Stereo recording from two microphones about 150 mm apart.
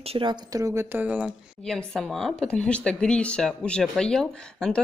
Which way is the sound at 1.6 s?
Centre (ahead or behind).